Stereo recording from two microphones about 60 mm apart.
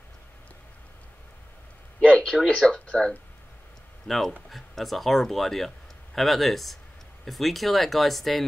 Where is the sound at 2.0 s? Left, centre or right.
Centre.